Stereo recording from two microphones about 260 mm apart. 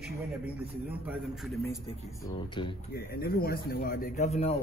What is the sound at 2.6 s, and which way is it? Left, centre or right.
Speech, centre.